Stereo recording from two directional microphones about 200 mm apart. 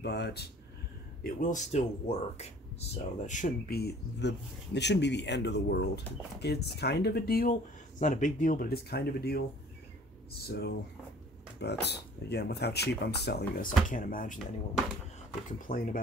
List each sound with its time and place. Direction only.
0.0 s speech: 55° left (ahead or behind)
1.2 s speech: 40° left (ahead or behind)
8.0 s speech: 40° left (ahead or behind)
10.5 s speech: 55° left (ahead or behind)
15.4 s speech: 45° left (ahead or behind)